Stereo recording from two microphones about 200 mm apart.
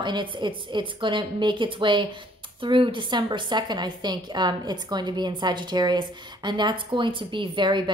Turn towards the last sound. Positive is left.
turn(degrees=-25)  # may be behind; listen again after turning